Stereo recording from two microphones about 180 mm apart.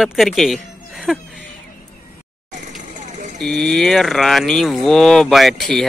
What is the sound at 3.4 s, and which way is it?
Speech, 5° left (ahead or behind).